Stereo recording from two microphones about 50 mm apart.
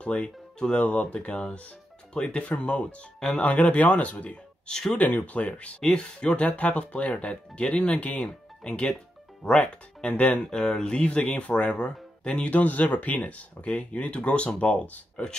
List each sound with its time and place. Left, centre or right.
0.0 s speech: left
3.2 s speech: centre
3.4 s speech: left
4.6 s speech: centre
4.9 s speech: left
10.5 s speech: centre